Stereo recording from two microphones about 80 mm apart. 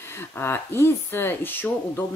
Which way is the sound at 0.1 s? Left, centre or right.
Left.